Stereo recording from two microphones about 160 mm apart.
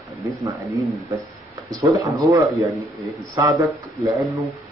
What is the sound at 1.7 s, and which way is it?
Speech, 20° right (ahead or behind).